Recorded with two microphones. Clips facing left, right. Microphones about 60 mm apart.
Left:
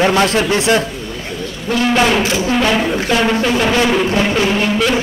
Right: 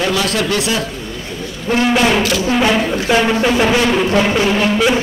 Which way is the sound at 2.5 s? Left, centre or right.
Centre.